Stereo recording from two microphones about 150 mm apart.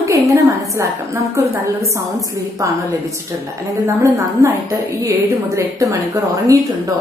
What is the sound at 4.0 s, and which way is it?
A woman's voice, 20° right (ahead or behind).